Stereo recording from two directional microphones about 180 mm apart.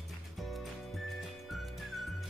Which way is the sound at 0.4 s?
Centre (ahead or behind).